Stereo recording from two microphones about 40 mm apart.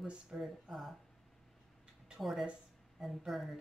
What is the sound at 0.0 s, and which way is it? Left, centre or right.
Speech, right.